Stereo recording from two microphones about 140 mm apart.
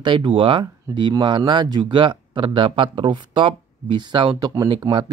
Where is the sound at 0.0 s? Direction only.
35° right (ahead or behind).